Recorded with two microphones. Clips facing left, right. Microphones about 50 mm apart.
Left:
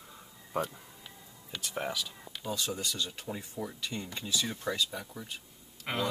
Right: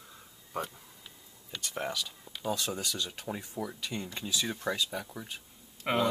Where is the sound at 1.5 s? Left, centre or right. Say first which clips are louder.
Even; centre.